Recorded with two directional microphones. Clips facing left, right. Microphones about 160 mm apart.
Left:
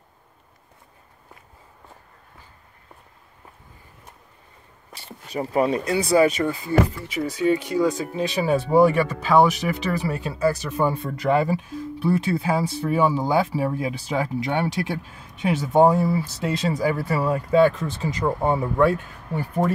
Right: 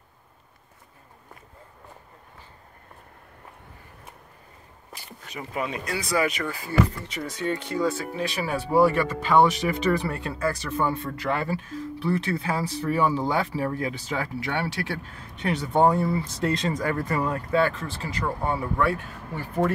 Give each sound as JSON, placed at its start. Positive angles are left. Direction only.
{"t": 4.9, "sound": "a sound", "side_deg": 30}
{"t": 5.9, "sound": "speech", "side_deg": 30}
{"t": 7.1, "sound": "speech", "side_deg": 5}
{"t": 9.9, "sound": "speech", "side_deg": 5}